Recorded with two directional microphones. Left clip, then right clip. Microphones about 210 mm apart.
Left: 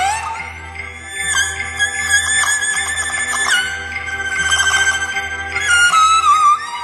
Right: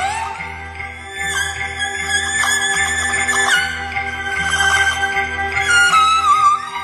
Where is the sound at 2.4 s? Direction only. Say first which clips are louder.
Right 1 dB; 20° left (ahead or behind).